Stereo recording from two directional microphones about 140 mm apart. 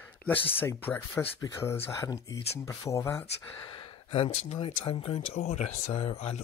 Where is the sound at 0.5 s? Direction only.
15° left (ahead or behind).